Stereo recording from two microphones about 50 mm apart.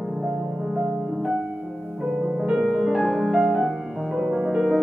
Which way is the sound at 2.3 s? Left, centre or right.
Centre.